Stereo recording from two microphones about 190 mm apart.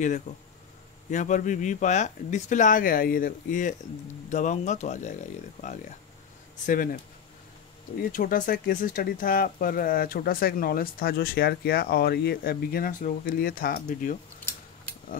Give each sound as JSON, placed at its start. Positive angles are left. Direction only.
{"t": 0.3, "sound": "speech", "side_deg": 40}
{"t": 8.0, "sound": "speech", "side_deg": 50}